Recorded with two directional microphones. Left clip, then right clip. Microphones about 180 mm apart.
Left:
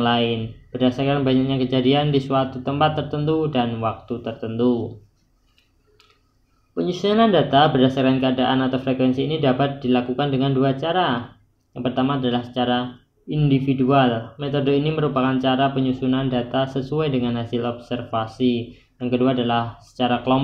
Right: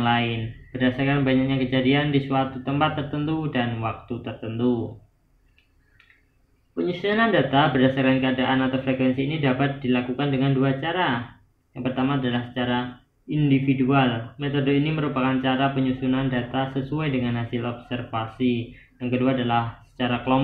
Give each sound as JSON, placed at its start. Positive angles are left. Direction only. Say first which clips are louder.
{"t": 0.0, "sound": "speech", "louder": "left 3 dB", "side_deg": 45}
{"t": 6.9, "sound": "speech", "louder": "left 4 dB", "side_deg": 50}